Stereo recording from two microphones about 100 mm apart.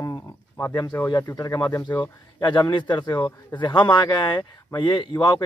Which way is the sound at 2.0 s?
50° left (ahead or behind).